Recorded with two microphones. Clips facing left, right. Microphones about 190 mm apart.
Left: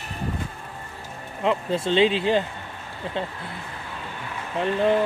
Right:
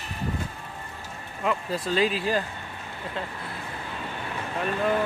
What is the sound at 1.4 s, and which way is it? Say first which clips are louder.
Speech: left 4 dB; 25° left (ahead or behind).